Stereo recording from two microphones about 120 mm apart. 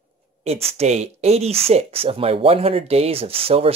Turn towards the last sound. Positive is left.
turn(degrees=-50)  # may be behind; listen again after turning